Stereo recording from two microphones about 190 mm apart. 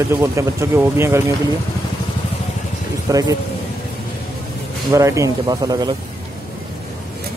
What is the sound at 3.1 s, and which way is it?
Speech, 20° right (ahead or behind).